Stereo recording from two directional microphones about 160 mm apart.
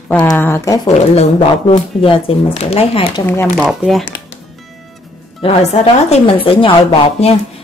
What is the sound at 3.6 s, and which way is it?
Speech, 5° right (ahead or behind).